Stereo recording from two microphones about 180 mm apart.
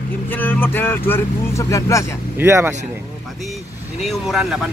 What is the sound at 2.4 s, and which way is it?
Speech, 15° right (ahead or behind).